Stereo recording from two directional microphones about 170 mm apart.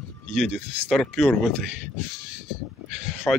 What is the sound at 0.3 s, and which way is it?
Speech, centre (ahead or behind).